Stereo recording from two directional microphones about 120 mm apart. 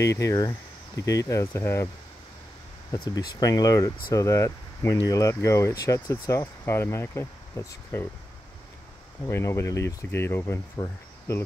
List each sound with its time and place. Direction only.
0.0 s speech: 25° left (ahead or behind)
2.9 s speech: 35° left (ahead or behind)
9.2 s speech: 20° left (ahead or behind)